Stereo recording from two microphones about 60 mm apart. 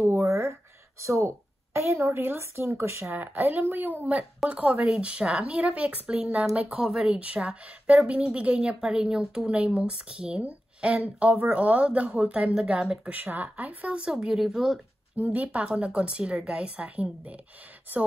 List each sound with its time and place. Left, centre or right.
0.0 s a sound: right
1.0 s speech: right
3.2 s a woman's voice: right
6.8 s a woman's voice: centre
12.7 s speech: centre
13.1 s a woman's voice: right
14.1 s speech: centre
15.1 s a woman's voice: right